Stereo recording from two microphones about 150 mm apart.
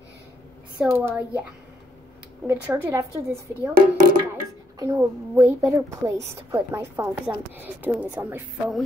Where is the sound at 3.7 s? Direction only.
70° right (ahead or behind).